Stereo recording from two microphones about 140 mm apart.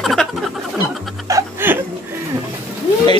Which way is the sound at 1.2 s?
20° right (ahead or behind).